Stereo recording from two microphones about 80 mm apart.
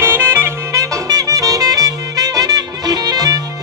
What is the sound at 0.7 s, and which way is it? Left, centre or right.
Music, right.